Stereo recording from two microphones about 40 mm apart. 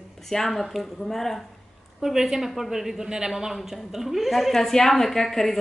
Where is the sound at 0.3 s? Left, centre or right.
Centre.